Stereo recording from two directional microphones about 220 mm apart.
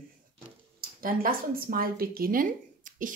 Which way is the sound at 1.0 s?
40° right (ahead or behind).